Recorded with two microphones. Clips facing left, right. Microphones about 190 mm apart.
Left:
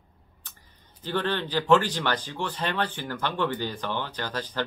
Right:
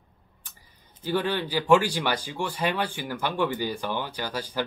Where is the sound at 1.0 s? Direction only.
10° right (ahead or behind).